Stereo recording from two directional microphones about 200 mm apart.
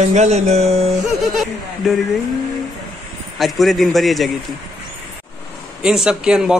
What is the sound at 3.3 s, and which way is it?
Speech, centre (ahead or behind).